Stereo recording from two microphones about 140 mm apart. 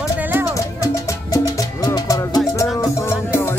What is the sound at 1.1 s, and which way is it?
Music, 25° left (ahead or behind).